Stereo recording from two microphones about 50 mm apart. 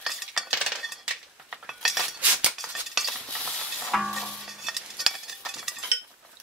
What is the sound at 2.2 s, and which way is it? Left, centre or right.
Music, right.